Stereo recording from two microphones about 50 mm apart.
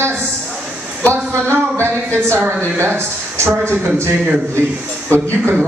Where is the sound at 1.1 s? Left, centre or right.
Right.